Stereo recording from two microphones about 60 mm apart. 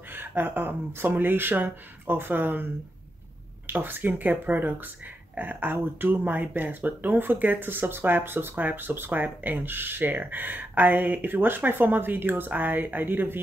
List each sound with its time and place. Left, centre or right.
0.1 s speech: right
3.7 s speech: right